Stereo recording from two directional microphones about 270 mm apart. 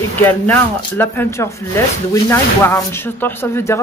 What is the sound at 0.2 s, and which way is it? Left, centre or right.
Speech, centre.